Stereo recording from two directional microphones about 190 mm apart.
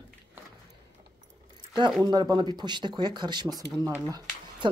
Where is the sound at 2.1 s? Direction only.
20° right (ahead or behind).